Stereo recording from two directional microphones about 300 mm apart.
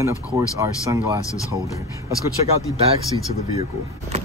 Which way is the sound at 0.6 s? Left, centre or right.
Centre.